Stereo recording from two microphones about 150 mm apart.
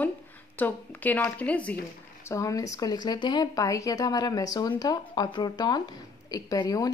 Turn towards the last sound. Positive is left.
turn(degrees=25)  # may be behind; listen again after turning